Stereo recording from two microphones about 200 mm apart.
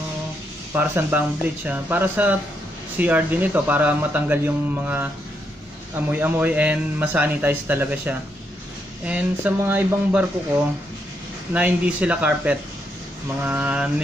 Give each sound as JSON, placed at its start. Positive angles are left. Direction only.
{"t": 0.7, "sound": "a man's voice", "side_deg": -10}
{"t": 11.5, "sound": "a man's voice", "side_deg": -5}